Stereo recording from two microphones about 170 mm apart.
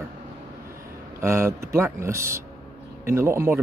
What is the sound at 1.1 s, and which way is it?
Speech, 15° right (ahead or behind).